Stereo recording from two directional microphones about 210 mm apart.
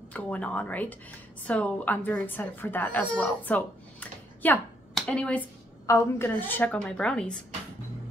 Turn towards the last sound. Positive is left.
turn(degrees=5)  # may be behind; listen again after turning